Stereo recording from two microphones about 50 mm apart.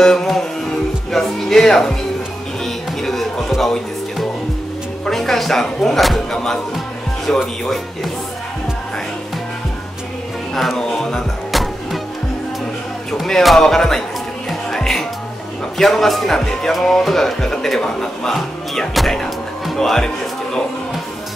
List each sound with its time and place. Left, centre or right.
0.0 s music: centre
1.1 s speech: centre
2.6 s music: centre
5.0 s speech: centre
7.6 s speech: centre
10.5 s music: centre
10.9 s speech: centre
13.2 s speech: centre
14.5 s music: centre
15.8 s speech: centre